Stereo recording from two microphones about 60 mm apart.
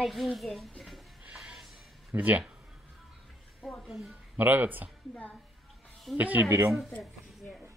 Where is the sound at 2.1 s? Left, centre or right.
Right.